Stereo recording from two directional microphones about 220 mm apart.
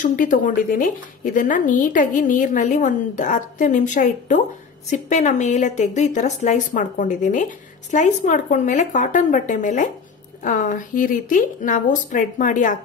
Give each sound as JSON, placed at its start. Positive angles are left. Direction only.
{"t": 0.0, "sound": "speech", "side_deg": 40}